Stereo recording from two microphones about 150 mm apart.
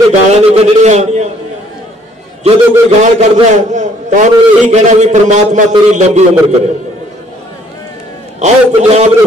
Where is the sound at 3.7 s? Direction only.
55° right (ahead or behind).